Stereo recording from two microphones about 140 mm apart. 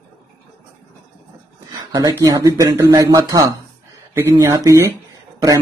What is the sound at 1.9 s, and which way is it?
A man's voice, 25° right (ahead or behind).